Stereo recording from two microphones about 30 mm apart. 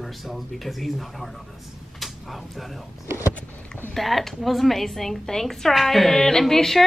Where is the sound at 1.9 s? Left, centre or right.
Centre.